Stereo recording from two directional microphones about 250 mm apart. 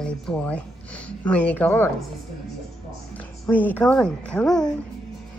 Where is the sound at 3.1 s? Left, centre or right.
Centre.